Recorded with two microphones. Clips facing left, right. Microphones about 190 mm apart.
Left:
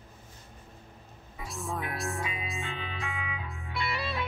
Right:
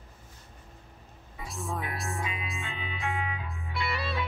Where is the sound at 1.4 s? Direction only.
Centre (ahead or behind).